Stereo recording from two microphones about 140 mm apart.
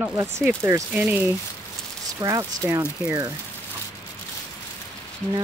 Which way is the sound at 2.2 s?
20° right (ahead or behind).